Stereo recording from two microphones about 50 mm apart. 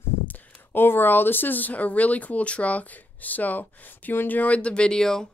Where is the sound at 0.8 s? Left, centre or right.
Left; by 5.3 s centre.